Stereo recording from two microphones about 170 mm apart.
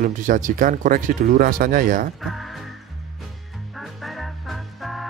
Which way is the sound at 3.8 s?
Centre (ahead or behind).